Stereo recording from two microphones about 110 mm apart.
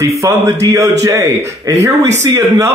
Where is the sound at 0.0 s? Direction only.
25° right (ahead or behind).